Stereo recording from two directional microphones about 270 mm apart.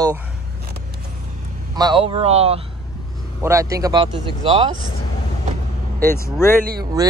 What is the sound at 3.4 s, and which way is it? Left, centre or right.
Speech, centre.